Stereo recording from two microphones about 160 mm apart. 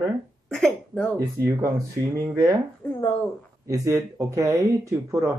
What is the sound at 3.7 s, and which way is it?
Speech, 20° right (ahead or behind).